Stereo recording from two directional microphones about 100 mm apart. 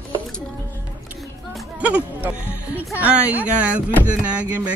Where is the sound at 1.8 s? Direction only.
15° right (ahead or behind).